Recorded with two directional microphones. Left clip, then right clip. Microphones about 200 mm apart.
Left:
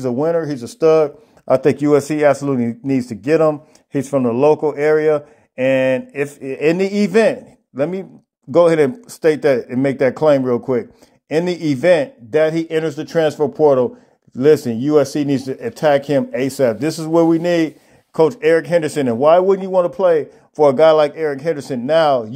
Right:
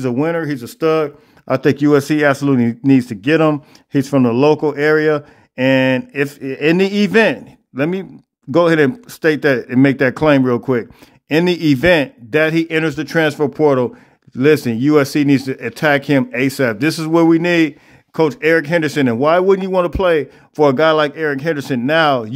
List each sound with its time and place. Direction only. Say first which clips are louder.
0.0 s speech: even; 20° right (ahead or behind)